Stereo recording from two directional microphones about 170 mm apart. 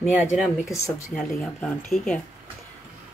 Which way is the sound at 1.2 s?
Centre (ahead or behind).